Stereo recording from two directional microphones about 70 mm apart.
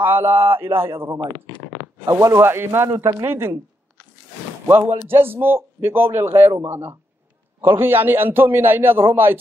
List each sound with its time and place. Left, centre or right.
0.0 s a man's voice: right
4.6 s a man's voice: right